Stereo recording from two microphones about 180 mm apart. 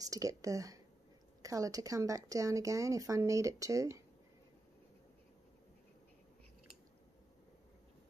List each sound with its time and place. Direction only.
0.0 s speech: 20° right (ahead or behind)